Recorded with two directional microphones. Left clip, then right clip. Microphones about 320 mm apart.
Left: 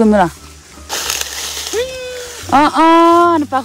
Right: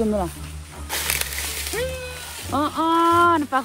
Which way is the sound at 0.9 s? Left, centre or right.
Centre.